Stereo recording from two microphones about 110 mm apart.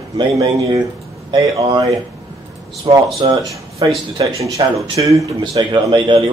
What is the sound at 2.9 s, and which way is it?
A man's voice, 35° right (ahead or behind).